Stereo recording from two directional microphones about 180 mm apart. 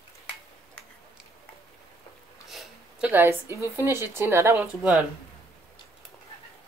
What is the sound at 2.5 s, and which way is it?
Speech, 5° right (ahead or behind).